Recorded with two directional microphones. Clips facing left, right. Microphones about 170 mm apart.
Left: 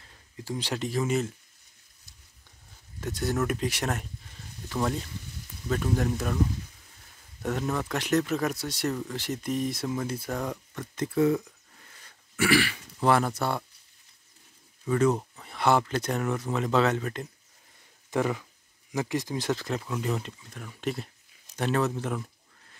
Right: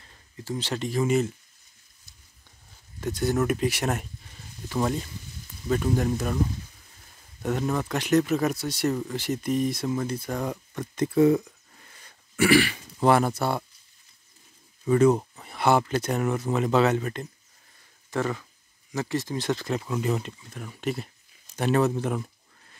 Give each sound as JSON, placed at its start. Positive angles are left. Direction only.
{"t": 0.4, "sound": "speech", "side_deg": 10}
{"t": 3.0, "sound": "speech", "side_deg": 0}
{"t": 5.7, "sound": "speech", "side_deg": -5}
{"t": 7.4, "sound": "speech", "side_deg": 0}
{"t": 10.7, "sound": "speech", "side_deg": -20}
{"t": 14.9, "sound": "a sound", "side_deg": -15}
{"t": 15.5, "sound": "speech", "side_deg": -5}
{"t": 18.1, "sound": "speech", "side_deg": 10}